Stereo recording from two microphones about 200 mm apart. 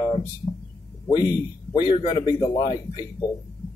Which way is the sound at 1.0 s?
20° left (ahead or behind).